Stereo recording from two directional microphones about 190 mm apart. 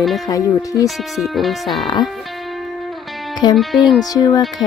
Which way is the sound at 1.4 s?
Centre (ahead or behind).